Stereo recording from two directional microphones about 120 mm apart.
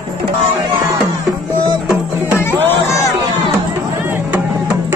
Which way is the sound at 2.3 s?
20° left (ahead or behind).